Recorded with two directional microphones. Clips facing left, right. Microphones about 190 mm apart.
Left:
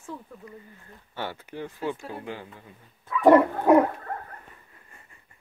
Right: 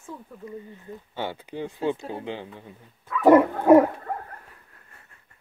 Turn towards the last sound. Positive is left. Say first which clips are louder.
# left 1 dB
turn(degrees=5)  # may be behind; listen again after turning